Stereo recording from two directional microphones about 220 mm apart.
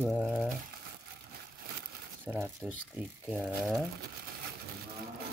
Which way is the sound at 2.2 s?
10° right (ahead or behind).